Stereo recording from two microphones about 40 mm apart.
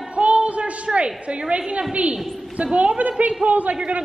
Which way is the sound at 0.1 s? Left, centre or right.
Right.